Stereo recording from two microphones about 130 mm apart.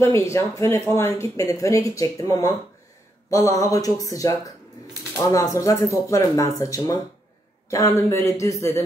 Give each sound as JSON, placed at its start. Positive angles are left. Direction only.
{"t": 0.0, "sound": "speech", "side_deg": 20}
{"t": 3.3, "sound": "speech", "side_deg": 25}